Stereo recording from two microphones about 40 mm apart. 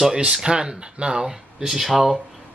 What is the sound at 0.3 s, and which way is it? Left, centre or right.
Speech, centre.